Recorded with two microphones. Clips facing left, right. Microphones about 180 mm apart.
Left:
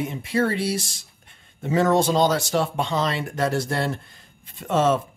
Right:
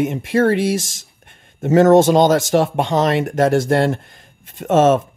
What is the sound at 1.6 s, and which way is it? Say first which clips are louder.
Speech: right 9 dB; 50° right (ahead or behind).